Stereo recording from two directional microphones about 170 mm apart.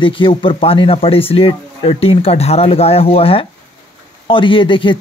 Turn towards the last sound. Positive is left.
turn(degrees=30)  # may be behind; listen again after turning